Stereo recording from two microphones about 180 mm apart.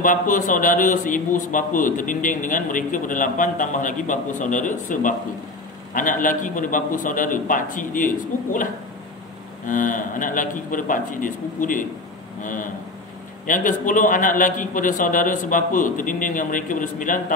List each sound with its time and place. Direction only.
0.0 s a man's voice: 45° left (ahead or behind)
9.7 s a man's voice: 45° left (ahead or behind)